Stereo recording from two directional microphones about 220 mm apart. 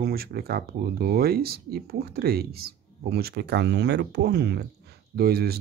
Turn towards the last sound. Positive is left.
turn(degrees=-45)  # may be behind; listen again after turning